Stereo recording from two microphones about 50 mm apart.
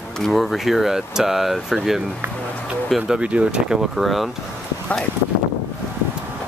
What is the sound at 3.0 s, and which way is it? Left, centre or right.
Speech, centre.